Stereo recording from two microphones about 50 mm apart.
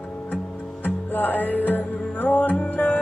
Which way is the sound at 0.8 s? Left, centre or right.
Left.